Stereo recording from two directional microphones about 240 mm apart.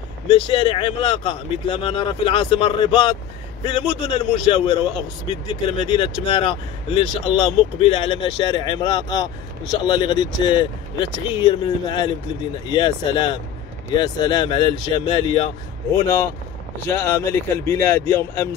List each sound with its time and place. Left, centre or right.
0.3 s a man's voice: left
16.8 s speech: centre